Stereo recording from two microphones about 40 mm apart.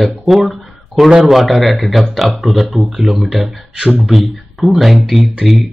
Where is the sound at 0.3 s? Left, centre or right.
Centre.